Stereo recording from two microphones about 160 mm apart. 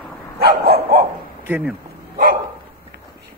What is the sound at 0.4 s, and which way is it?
Dog, 75° right (ahead or behind).